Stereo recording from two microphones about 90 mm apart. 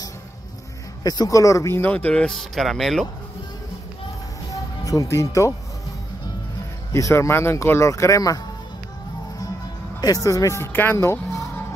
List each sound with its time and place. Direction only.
1.0 s speech: 45° left (ahead or behind)
1.8 s speech: 20° left (ahead or behind); by 3.1 s centre (ahead or behind)
4.5 s music: 40° left (ahead or behind)
6.9 s speech: 30° left (ahead or behind)
9.9 s speech: 40° left (ahead or behind)